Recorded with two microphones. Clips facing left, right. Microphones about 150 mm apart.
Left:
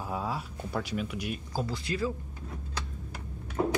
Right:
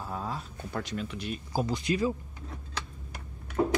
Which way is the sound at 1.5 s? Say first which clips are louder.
Right 6 dB; 15° right (ahead or behind).